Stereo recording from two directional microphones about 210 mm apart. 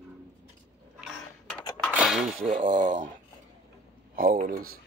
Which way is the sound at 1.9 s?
5° right (ahead or behind).